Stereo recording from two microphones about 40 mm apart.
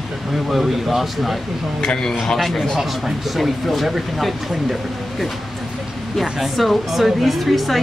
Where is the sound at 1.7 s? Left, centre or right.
Left.